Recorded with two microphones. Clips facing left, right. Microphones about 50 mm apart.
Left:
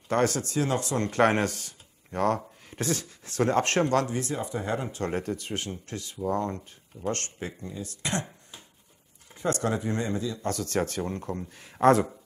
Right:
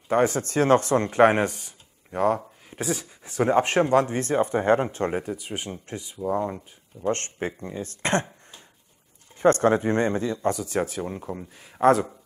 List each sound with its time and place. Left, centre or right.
0.1 s a man's voice: centre
0.4 s speech: right
0.9 s a man's voice: centre
4.1 s speech: right
4.8 s speech: right
5.1 s a man's voice: centre
7.1 s speech: right
10.4 s a man's voice: centre